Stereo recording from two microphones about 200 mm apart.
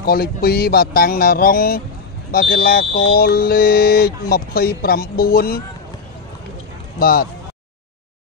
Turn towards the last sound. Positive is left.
turn(degrees=50)  # may be behind; listen again after turning